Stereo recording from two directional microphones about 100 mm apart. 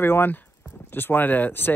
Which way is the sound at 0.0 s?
20° left (ahead or behind).